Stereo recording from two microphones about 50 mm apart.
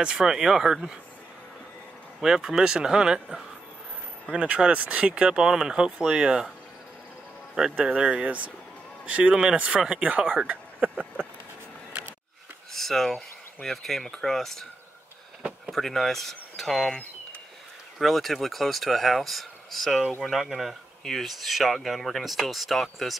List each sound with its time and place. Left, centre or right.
0.0 s speech: centre
2.1 s speech: centre; by 5.3 s right
5.3 s speech: centre
7.7 s speech: right
12.7 s speech: centre
15.7 s speech: centre
17.9 s speech: centre